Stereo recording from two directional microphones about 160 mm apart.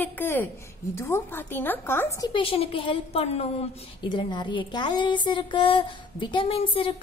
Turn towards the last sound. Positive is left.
turn(degrees=35)  # may be behind; listen again after turning